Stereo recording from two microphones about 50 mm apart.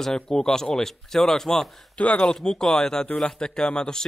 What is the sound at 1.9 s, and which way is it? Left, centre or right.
Speech, left.